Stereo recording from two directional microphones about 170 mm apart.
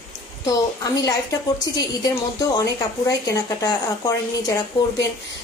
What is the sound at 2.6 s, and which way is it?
A woman's voice, 20° left (ahead or behind).